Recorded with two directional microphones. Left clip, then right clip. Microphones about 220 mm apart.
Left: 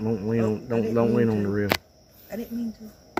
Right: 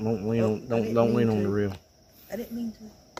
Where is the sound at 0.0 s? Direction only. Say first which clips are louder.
Left 1 dB; 5° right (ahead or behind).